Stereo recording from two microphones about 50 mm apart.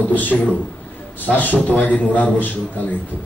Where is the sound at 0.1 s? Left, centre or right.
Left.